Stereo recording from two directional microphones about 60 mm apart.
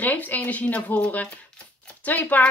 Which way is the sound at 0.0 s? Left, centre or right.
Left.